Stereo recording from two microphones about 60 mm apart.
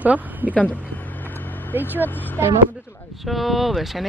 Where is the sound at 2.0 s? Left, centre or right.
Left.